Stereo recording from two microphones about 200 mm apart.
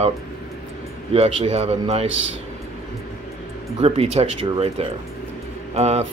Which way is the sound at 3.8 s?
30° right (ahead or behind).